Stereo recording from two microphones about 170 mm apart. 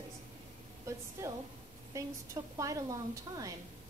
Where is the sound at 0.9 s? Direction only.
15° right (ahead or behind).